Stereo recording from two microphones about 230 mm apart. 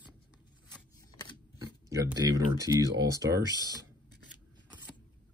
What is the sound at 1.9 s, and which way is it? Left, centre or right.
Speech, centre.